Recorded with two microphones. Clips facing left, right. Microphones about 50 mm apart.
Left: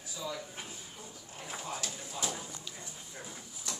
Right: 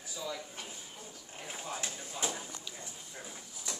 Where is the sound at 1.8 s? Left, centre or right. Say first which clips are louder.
Right 1 dB; right.